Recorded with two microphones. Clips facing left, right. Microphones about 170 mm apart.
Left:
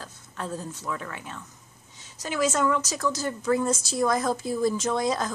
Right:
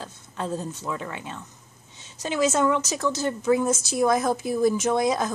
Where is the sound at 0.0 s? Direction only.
20° right (ahead or behind).